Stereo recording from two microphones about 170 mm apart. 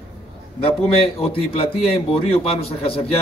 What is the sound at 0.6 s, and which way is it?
A man's voice, 35° left (ahead or behind).